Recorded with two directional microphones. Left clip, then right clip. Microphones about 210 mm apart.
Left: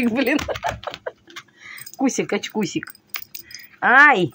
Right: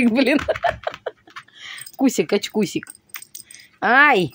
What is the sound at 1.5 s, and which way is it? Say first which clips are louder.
Speech: right 3 dB; 25° right (ahead or behind).